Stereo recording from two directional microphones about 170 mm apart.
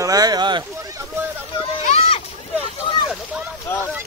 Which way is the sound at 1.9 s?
35° left (ahead or behind).